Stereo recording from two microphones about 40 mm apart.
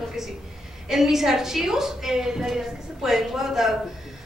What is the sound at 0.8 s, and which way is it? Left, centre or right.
A woman's voice, centre.